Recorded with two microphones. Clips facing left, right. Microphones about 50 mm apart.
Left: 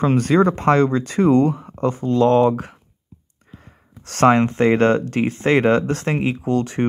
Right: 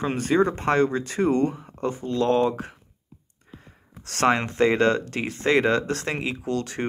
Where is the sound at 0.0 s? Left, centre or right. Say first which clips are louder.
Left 6 dB; left.